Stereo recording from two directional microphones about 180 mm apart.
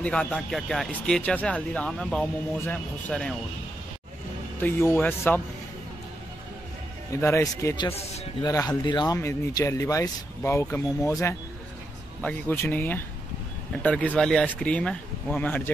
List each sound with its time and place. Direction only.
0.0 s speech: 5° left (ahead or behind)
4.6 s speech: 10° left (ahead or behind)
7.1 s speech: 15° left (ahead or behind)